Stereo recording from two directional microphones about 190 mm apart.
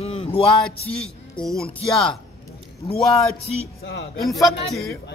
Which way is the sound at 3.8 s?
70° left (ahead or behind).